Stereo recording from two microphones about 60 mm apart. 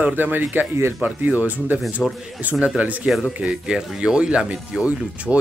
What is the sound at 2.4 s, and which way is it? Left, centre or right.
Speech, right.